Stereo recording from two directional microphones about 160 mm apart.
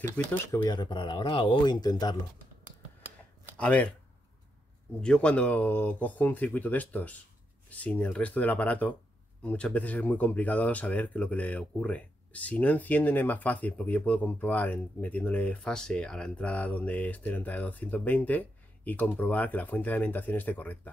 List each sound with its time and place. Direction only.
0.0 s speech: 15° left (ahead or behind)
0.7 s speech: 30° left (ahead or behind)
3.5 s speech: 10° left (ahead or behind)
5.0 s speech: 5° left (ahead or behind)